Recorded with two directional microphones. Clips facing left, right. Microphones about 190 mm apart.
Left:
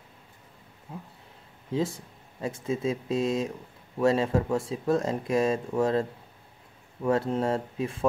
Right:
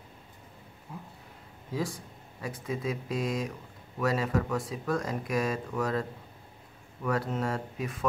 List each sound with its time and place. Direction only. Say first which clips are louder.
0.9 s speech: left 2 dB; 25° left (ahead or behind)